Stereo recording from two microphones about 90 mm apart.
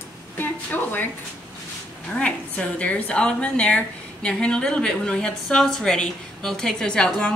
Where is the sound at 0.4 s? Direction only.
20° left (ahead or behind).